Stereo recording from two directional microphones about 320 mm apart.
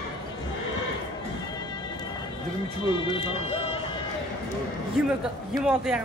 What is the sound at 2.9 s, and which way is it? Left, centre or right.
Speech, centre.